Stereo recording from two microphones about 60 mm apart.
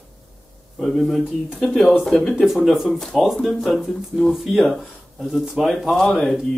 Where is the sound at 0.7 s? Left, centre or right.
Centre.